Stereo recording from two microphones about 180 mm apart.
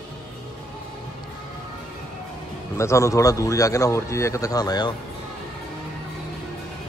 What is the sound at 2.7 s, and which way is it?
Speech, 15° left (ahead or behind).